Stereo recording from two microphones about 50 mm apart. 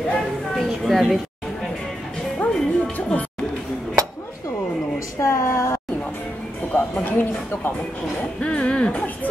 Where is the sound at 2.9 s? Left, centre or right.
Left.